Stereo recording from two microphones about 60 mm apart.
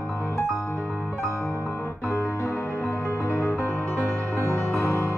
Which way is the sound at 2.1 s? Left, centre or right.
Left.